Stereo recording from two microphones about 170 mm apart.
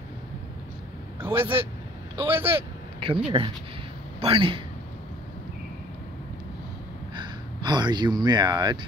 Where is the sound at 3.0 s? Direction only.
30° right (ahead or behind).